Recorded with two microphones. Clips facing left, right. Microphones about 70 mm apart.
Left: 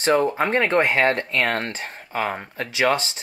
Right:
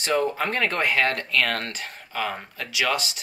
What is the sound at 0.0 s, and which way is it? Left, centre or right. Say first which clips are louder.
Speech: left 4 dB; left.